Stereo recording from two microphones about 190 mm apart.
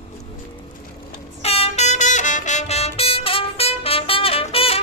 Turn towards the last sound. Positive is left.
turn(degrees=30)  # may be behind; listen again after turning